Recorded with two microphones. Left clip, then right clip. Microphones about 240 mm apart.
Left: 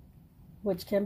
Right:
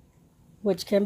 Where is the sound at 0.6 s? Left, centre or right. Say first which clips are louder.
Right 5 dB; right.